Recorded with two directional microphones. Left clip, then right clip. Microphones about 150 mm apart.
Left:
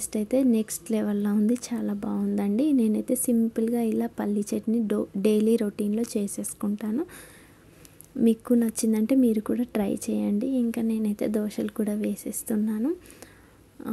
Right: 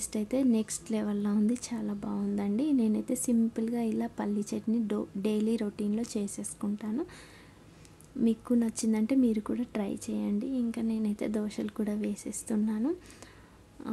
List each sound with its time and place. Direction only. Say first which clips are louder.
0.0 s a woman's voice: left 6 dB; 25° left (ahead or behind)
8.2 s a woman's voice: left 6 dB; 30° left (ahead or behind)